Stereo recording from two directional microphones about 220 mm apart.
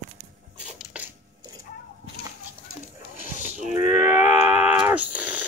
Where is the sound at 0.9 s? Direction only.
5° right (ahead or behind).